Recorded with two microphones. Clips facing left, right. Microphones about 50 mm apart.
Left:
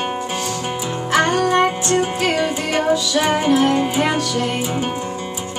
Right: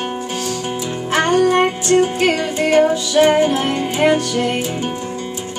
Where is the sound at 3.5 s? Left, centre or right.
Centre.